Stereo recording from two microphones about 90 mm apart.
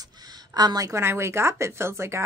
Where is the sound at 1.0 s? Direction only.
30° right (ahead or behind).